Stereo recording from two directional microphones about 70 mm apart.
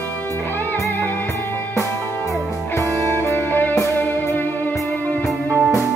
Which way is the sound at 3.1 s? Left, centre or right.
Left.